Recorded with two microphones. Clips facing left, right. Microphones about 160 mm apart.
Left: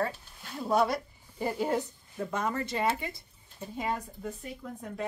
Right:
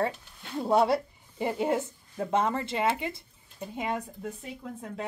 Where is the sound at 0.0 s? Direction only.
25° right (ahead or behind).